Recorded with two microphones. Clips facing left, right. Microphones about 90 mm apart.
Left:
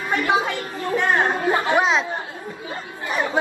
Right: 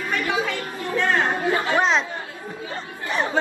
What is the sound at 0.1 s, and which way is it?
Speech, 20° left (ahead or behind).